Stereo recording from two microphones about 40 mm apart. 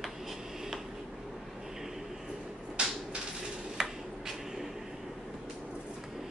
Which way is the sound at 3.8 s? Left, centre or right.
Centre.